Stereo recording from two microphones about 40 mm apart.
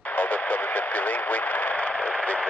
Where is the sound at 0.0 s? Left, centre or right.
Left.